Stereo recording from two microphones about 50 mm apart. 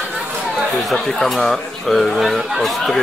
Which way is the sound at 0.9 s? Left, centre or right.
Centre.